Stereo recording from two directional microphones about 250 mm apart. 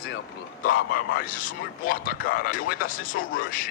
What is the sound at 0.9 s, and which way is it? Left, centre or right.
A man's voice, left.